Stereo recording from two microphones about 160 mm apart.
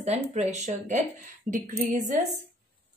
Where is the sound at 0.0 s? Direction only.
45° right (ahead or behind).